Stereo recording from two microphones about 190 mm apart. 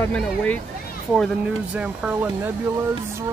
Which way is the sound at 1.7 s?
5° right (ahead or behind).